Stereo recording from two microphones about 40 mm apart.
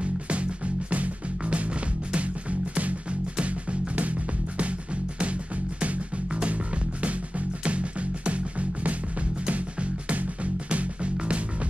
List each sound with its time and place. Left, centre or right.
0.0 s music: right